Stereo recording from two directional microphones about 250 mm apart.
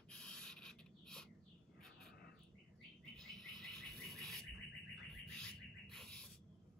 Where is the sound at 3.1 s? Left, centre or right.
Centre.